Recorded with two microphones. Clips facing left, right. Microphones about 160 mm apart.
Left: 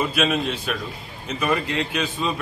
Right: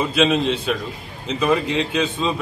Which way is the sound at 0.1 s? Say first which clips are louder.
Right 5 dB; 25° right (ahead or behind).